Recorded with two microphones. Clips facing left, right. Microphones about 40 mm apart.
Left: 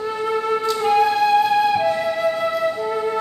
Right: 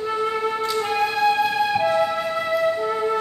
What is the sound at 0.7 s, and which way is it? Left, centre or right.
Flute, centre.